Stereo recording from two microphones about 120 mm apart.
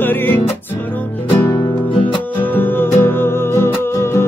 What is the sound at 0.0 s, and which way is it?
Music, 15° left (ahead or behind).